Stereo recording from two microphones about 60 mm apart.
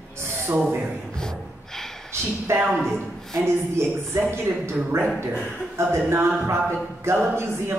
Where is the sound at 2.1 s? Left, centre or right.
Right.